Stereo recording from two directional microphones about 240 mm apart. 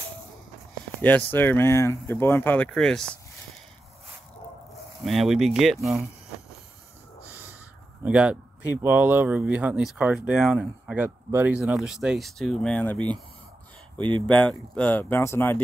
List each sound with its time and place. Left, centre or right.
1.0 s speech: centre
5.0 s speech: centre
8.0 s speech: centre
13.9 s speech: centre
14.2 s speech: centre